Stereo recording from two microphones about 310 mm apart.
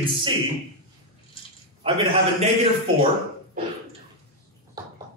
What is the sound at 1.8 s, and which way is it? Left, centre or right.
Speech, centre.